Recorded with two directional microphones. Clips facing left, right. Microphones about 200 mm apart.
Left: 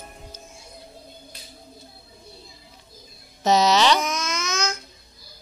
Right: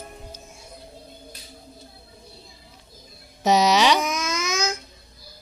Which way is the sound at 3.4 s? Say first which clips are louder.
Even; 10° right (ahead or behind).